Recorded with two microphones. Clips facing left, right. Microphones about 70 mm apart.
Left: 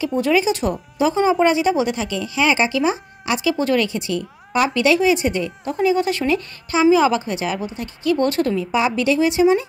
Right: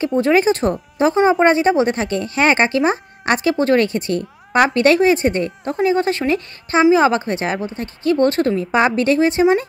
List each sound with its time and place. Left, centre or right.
0.2 s speech: right